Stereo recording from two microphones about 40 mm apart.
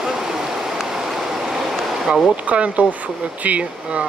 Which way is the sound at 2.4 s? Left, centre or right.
Right.